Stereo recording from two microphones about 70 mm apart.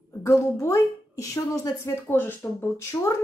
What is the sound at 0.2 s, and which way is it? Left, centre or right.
A woman's voice, left.